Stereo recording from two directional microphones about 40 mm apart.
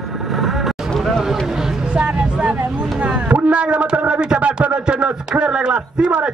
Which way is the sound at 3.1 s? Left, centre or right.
Right.